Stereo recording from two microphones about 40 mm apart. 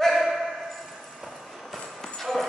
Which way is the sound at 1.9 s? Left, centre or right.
Centre.